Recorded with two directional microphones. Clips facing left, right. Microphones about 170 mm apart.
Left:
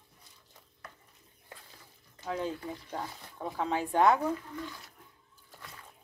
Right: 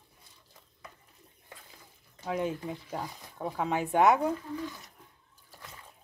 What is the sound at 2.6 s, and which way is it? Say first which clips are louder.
Speech: right 2 dB; 5° right (ahead or behind).